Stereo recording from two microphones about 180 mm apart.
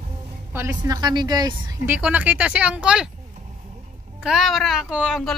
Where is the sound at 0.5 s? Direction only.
15° right (ahead or behind).